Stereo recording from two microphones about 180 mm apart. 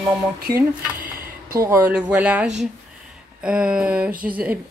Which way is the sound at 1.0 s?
55° right (ahead or behind).